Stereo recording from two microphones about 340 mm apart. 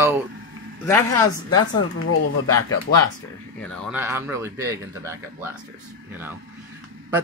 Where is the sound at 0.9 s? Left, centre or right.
Centre.